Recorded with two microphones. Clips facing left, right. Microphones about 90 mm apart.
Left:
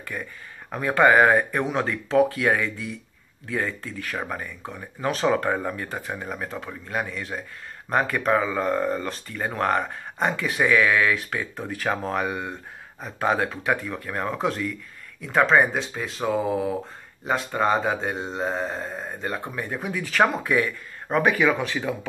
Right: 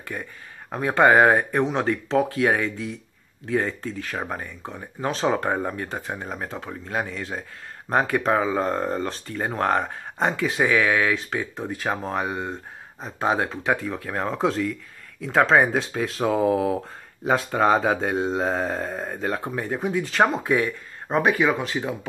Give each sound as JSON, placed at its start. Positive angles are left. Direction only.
{"t": 0.1, "sound": "speech", "side_deg": -35}
{"t": 1.0, "sound": "speech", "side_deg": -40}
{"t": 11.8, "sound": "speech", "side_deg": -20}
{"t": 18.1, "sound": "speech", "side_deg": -5}
{"t": 18.4, "sound": "speech", "side_deg": -55}
{"t": 19.5, "sound": "speech", "side_deg": -35}